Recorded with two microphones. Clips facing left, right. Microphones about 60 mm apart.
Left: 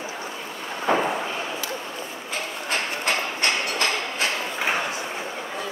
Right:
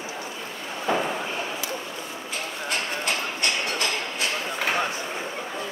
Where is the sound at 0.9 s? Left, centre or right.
Left.